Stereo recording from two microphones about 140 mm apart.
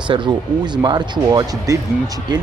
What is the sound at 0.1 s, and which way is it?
Speech, 35° right (ahead or behind).